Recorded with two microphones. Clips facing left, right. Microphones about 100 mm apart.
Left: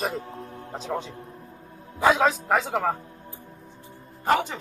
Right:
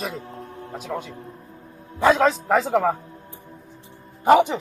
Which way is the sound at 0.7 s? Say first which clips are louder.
Even; 25° left (ahead or behind).